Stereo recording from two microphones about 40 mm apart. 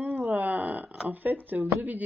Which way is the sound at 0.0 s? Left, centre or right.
Right.